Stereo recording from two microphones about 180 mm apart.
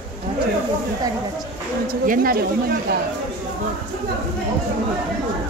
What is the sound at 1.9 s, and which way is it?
Speech, 55° right (ahead or behind).